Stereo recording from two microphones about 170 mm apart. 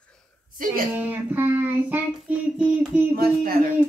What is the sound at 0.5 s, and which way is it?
Speech, 55° right (ahead or behind).